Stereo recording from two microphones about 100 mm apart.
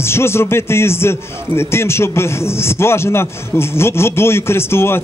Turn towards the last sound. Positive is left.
turn(degrees=25)  # may be behind; listen again after turning